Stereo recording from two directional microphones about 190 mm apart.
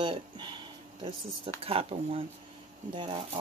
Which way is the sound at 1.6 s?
30° right (ahead or behind).